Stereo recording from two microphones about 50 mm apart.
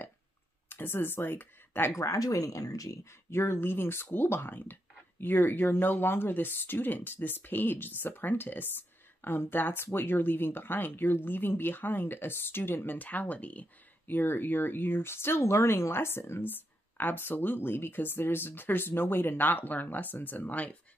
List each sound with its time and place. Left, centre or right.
0.7 s speech: left
2.0 s speech: left
3.3 s speech: left